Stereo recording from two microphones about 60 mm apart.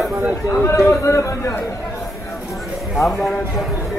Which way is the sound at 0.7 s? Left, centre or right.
Left.